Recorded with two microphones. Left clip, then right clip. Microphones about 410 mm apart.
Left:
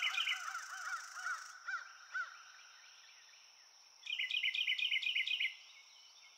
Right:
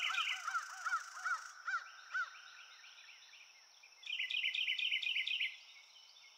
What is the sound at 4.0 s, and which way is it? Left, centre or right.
Cricket, centre.